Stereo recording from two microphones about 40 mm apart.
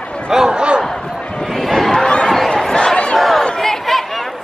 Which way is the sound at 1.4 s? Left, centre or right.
Centre.